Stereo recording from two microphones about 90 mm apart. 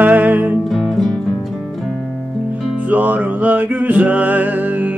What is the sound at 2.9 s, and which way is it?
Music, 20° right (ahead or behind).